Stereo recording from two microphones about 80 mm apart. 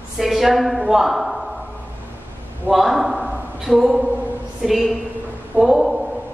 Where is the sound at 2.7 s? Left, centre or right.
Centre.